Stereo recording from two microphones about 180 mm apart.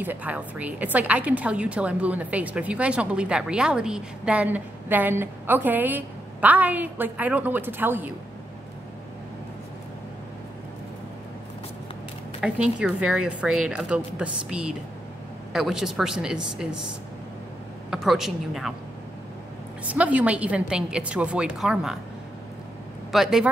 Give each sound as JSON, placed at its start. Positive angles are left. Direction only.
{"t": 0.0, "sound": "a woman's voice", "side_deg": -10}
{"t": 12.4, "sound": "a woman's voice", "side_deg": -5}
{"t": 17.8, "sound": "a woman's voice", "side_deg": 0}
{"t": 19.8, "sound": "a woman's voice", "side_deg": -10}
{"t": 23.1, "sound": "a woman's voice", "side_deg": 0}